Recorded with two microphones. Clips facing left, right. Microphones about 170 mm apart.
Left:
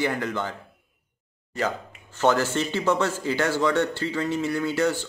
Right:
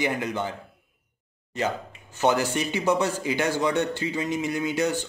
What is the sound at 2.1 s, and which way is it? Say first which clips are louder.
A man's voice: left 1 dB; 15° right (ahead or behind).